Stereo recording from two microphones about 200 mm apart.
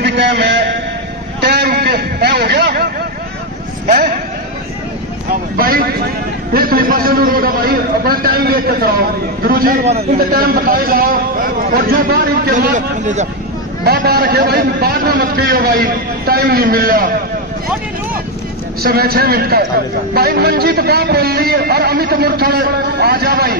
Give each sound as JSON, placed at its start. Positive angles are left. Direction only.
{"t": 0.0, "sound": "a sound", "side_deg": -55}
{"t": 5.3, "sound": "vehicle", "side_deg": -45}
{"t": 6.5, "sound": "a sound", "side_deg": -45}
{"t": 10.1, "sound": "a man's voice", "side_deg": -50}
{"t": 13.8, "sound": "a man's voice", "side_deg": -50}
{"t": 18.8, "sound": "a man's voice", "side_deg": -50}